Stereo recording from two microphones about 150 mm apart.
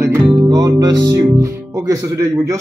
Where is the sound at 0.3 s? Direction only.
25° right (ahead or behind).